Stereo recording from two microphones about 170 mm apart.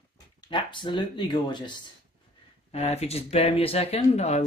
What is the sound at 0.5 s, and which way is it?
Speech, 30° left (ahead or behind).